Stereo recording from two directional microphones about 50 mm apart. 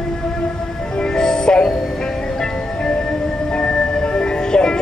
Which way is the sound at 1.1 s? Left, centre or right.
Centre.